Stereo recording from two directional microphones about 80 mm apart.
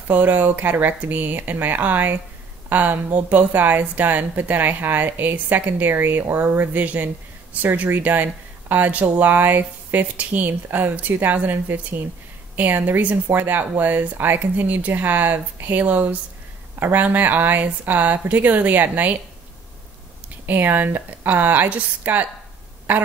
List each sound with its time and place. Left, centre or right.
0.1 s a woman's voice: right
20.4 s a woman's voice: right